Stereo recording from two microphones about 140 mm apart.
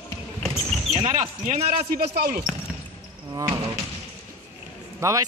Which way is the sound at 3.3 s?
25° right (ahead or behind).